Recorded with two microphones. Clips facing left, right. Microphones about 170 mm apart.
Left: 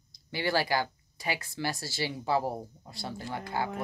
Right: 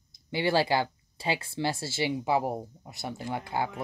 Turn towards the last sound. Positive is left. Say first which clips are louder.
# right 2 dB
turn(degrees=-20)  # may be behind; listen again after turning